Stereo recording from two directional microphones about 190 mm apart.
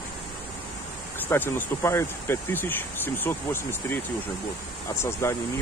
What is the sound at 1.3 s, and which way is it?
Speech, 15° left (ahead or behind).